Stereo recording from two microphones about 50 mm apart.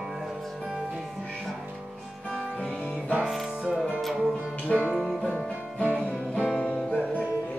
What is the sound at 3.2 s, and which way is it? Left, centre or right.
Music, centre.